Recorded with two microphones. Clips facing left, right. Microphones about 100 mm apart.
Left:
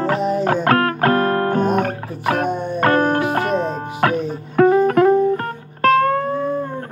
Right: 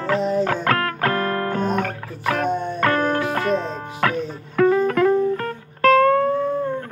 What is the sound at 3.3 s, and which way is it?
Music, 45° left (ahead or behind).